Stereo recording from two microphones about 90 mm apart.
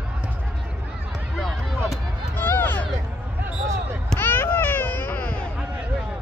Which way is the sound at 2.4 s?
20° left (ahead or behind).